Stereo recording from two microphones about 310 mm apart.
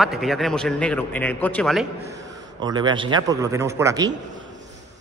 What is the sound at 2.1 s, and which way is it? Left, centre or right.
Speech, centre.